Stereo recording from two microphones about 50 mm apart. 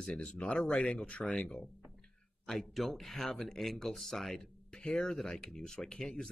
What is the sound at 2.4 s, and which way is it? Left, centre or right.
Speech, centre.